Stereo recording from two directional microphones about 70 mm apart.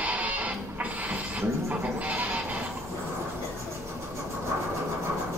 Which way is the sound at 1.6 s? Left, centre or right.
Right.